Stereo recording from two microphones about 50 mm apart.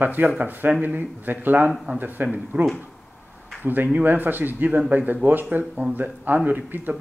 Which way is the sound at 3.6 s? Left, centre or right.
Right.